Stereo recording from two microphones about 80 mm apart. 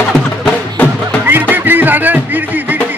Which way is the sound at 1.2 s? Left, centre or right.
Right.